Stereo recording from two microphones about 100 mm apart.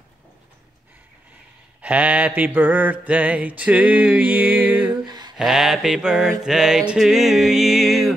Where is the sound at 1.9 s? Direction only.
15° right (ahead or behind).